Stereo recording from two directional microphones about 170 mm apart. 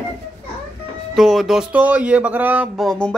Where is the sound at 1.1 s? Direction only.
Centre (ahead or behind).